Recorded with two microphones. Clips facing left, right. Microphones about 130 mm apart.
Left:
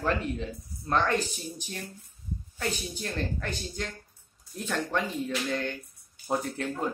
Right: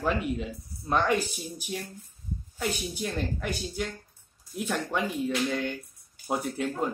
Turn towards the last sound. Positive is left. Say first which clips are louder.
# right 2 dB
turn(degrees=-10)  # may be behind; listen again after turning